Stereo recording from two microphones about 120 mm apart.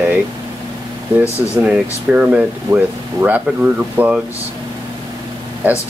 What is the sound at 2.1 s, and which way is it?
Speech, 10° right (ahead or behind).